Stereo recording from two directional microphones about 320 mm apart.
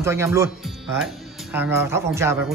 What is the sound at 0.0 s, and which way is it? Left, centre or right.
Speech, centre.